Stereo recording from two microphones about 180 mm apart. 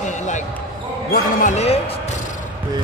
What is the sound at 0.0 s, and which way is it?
Basketball bounce, 40° left (ahead or behind).